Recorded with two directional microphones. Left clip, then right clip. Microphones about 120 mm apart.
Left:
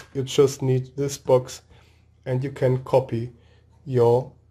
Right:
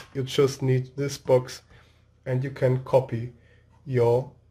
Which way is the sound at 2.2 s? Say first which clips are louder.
Left 2 dB; 45° left (ahead or behind).